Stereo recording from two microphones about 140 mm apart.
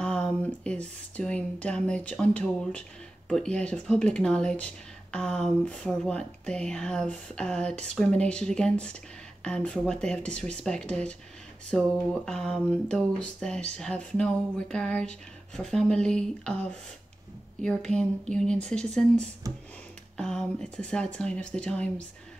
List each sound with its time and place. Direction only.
0.0 s speech: 5° left (ahead or behind)
17.6 s speech: 5° left (ahead or behind)
19.4 s a sound: 25° right (ahead or behind)
20.2 s speech: 5° left (ahead or behind)